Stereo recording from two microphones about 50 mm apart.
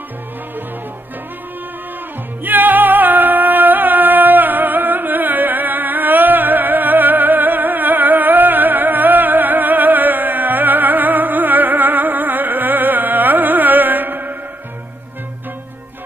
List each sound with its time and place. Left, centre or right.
2.4 s music: right